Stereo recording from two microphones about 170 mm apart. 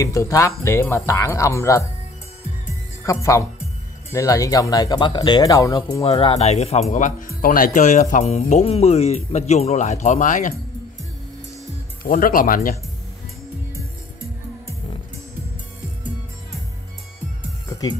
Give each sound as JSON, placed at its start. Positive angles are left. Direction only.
{"t": 0.0, "sound": "speech", "side_deg": 20}
{"t": 3.0, "sound": "speech", "side_deg": 15}
{"t": 12.0, "sound": "speech", "side_deg": 55}
{"t": 17.6, "sound": "music", "side_deg": 20}